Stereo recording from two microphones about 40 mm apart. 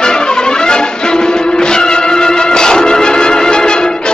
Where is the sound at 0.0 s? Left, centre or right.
Centre.